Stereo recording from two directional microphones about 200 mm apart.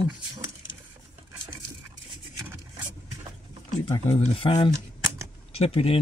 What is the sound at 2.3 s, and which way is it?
Vehicle, 15° right (ahead or behind).